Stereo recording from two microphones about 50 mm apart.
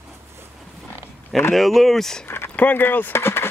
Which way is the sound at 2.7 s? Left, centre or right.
Left.